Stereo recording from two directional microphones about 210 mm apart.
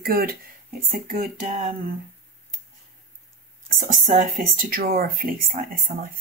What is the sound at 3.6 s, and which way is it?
Speech, 40° right (ahead or behind).